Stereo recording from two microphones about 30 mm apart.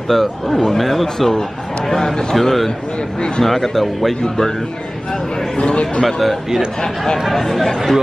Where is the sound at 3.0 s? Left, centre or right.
Left.